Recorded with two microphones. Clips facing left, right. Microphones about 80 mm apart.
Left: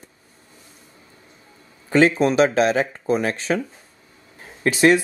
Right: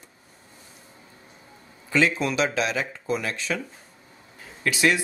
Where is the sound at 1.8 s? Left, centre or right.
Left.